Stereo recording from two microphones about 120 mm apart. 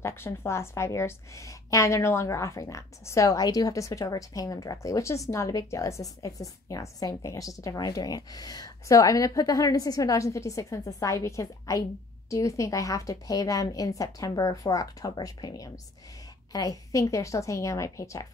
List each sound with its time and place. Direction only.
0.0 s a woman's voice: 20° left (ahead or behind)